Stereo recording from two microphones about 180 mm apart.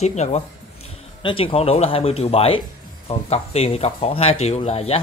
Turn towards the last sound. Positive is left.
turn(degrees=35)  # may be behind; listen again after turning